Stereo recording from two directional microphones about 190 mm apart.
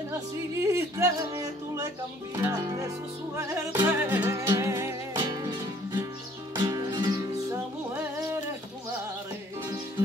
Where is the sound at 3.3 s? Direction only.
15° right (ahead or behind).